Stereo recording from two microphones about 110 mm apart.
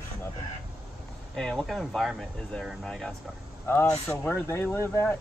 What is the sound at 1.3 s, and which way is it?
Speech, 5° left (ahead or behind).